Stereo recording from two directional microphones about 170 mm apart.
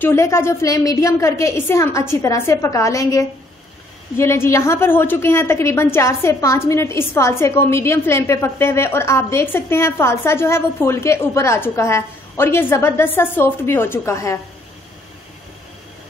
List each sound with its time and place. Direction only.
0.0 s a woman's voice: 15° left (ahead or behind)